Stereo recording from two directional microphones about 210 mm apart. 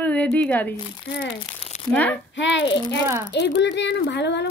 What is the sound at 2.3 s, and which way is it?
Speech, 60° left (ahead or behind).